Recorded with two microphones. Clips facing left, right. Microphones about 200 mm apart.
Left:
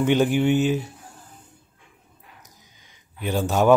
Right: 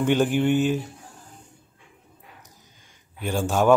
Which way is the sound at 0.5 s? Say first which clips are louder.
Left 1 dB; 50° right (ahead or behind).